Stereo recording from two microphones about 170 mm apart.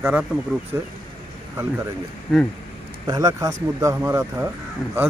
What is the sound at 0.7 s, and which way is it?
Speech, 20° right (ahead or behind).